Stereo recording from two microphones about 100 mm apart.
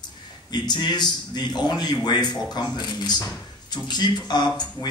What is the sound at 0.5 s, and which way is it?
A man's voice, 45° left (ahead or behind).